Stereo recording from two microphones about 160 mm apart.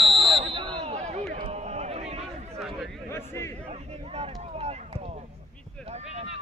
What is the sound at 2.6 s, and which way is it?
Chatter, centre (ahead or behind).